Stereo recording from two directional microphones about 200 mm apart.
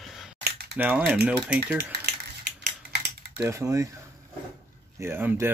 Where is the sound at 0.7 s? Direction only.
5° right (ahead or behind).